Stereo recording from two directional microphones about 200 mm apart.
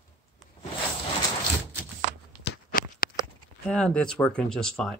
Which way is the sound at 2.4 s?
50° left (ahead or behind).